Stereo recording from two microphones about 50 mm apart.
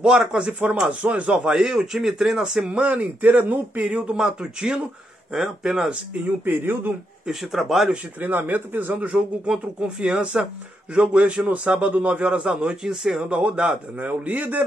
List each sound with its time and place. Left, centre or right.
0.0 s a man's voice: centre
2.7 s speech: right
4.2 s a man's voice: centre
6.4 s speech: right
7.2 s speech: centre
8.2 s speech: right
9.9 s a man's voice: centre
12.4 s a man's voice: centre
13.6 s speech: right